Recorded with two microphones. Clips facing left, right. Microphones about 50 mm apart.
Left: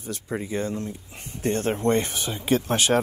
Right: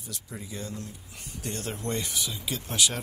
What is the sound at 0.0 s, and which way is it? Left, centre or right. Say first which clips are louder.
Speech: left 11 dB; left.